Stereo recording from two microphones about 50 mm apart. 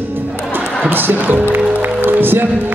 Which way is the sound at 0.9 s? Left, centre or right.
Right.